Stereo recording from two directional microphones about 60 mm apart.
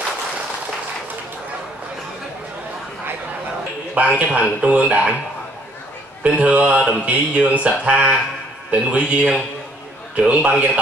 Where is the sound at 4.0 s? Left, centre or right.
Right.